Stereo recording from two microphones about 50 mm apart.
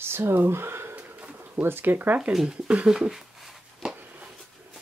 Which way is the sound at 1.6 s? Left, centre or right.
Right.